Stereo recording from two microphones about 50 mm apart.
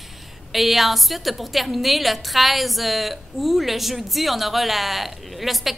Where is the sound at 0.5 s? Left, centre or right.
Centre.